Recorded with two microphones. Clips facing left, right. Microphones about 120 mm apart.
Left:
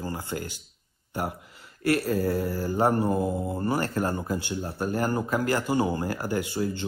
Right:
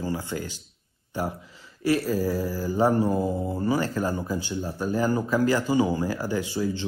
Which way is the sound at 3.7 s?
55° left (ahead or behind).